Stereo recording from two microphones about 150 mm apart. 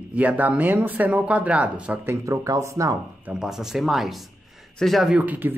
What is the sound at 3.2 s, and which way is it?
Speech, 5° right (ahead or behind).